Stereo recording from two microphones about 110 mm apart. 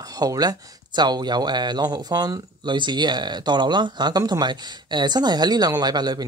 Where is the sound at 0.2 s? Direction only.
35° right (ahead or behind).